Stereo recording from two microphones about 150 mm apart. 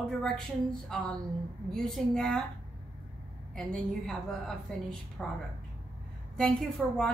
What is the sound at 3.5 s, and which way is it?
A woman's voice, 5° left (ahead or behind).